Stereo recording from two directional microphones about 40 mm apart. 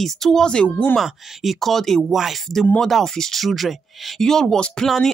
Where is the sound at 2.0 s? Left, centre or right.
Centre.